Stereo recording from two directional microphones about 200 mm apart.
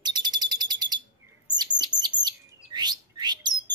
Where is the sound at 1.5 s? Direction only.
20° right (ahead or behind).